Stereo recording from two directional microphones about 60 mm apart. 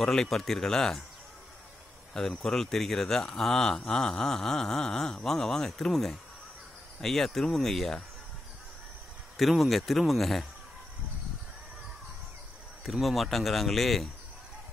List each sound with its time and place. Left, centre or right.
0.0 s speech: centre
2.1 s speech: centre
9.4 s speech: centre
12.8 s speech: centre